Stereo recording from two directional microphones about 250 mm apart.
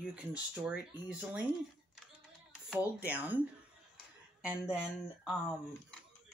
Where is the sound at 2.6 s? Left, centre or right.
Centre.